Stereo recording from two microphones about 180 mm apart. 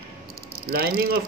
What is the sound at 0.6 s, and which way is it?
Speech, 55° right (ahead or behind).